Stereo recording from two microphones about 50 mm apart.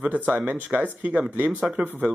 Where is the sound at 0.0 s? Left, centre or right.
Right.